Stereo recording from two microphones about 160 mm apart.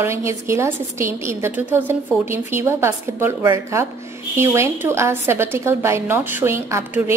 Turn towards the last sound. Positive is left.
turn(degrees=-15)  # may be behind; listen again after turning